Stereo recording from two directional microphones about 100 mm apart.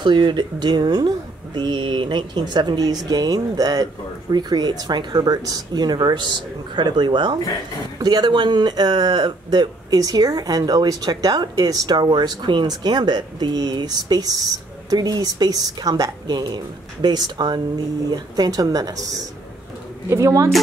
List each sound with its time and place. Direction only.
0.0 s speech: 50° right (ahead or behind)
20.1 s speech: 25° right (ahead or behind)